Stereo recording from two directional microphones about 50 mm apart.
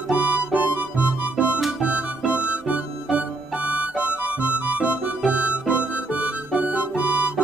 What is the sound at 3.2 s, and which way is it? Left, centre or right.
Music, right.